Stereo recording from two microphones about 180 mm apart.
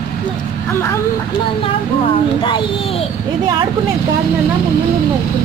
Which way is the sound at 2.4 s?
30° left (ahead or behind).